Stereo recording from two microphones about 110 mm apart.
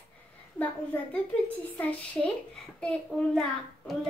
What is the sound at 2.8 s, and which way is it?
Speech, 10° left (ahead or behind).